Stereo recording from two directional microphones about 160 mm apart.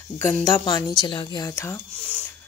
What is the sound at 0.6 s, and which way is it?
A woman's voice, 25° left (ahead or behind).